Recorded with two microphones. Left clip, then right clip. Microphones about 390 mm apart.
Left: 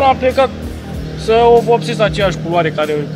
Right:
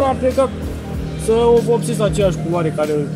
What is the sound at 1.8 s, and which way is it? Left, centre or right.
Speech, left.